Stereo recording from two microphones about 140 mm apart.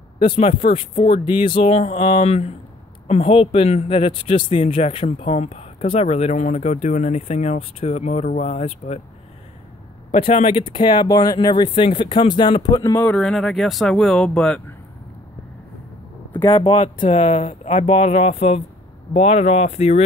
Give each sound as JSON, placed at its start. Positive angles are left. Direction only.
{"t": 0.2, "sound": "speech", "side_deg": 40}
{"t": 10.1, "sound": "speech", "side_deg": 45}
{"t": 13.0, "sound": "speech", "side_deg": 5}
{"t": 16.7, "sound": "speech", "side_deg": 55}